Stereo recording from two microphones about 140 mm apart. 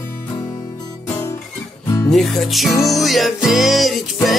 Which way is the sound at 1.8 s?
25° left (ahead or behind).